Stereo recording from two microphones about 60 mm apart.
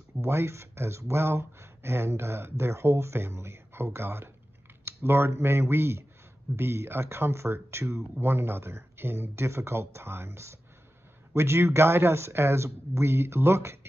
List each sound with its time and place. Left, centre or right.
0.2 s speech: right